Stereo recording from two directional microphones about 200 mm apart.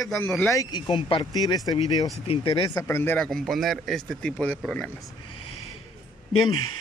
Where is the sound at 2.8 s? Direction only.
10° left (ahead or behind).